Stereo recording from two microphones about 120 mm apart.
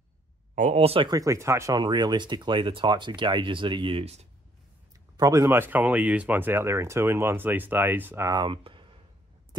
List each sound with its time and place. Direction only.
0.6 s speech: 65° right (ahead or behind)
1.0 s speech: 30° right (ahead or behind)
1.8 s speech: 40° right (ahead or behind); by 4.3 s 60° right (ahead or behind)
5.1 s speech: 30° right (ahead or behind)
8.3 s speech: 40° right (ahead or behind)